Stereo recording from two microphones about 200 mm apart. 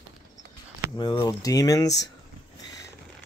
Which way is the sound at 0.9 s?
20° left (ahead or behind).